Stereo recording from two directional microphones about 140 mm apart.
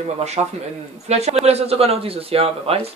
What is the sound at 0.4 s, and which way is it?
Speech, 40° right (ahead or behind).